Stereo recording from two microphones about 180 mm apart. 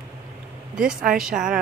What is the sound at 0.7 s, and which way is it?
Speech, 5° right (ahead or behind).